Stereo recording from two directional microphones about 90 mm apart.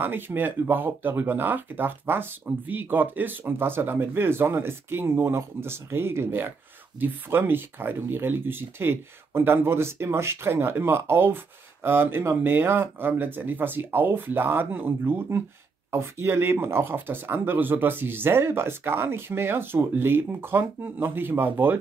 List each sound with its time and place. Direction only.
0.0 s speech: 25° right (ahead or behind)